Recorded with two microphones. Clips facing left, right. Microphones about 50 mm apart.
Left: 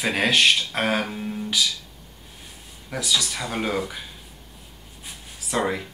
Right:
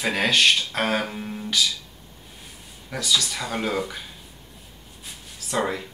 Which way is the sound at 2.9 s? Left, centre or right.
Centre.